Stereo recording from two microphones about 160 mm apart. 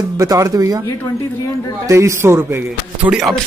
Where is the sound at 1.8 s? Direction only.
20° right (ahead or behind).